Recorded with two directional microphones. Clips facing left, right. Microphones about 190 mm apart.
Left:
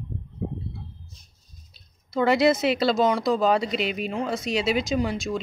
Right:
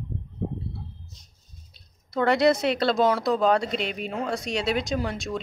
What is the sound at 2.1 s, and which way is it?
Speech, centre (ahead or behind).